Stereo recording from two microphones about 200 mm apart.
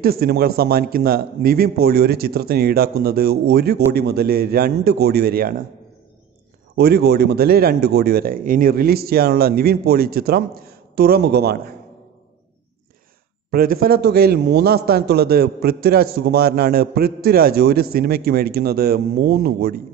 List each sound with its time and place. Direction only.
0.0 s a man's voice: 50° right (ahead or behind)
6.7 s a man's voice: 55° right (ahead or behind)
13.5 s a man's voice: 50° right (ahead or behind)